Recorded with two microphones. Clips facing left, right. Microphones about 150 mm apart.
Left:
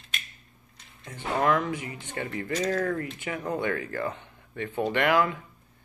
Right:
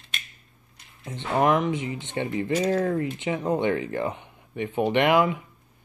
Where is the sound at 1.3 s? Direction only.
20° right (ahead or behind).